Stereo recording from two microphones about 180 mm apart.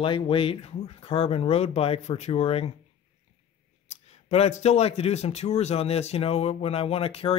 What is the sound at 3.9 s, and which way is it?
Speech, 35° left (ahead or behind).